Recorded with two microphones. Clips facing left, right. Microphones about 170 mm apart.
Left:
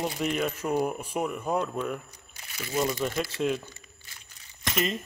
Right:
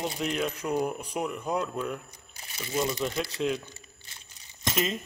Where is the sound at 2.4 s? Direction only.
25° right (ahead or behind).